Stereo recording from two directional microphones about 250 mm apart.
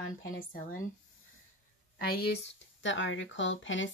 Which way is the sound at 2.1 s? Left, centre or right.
Left.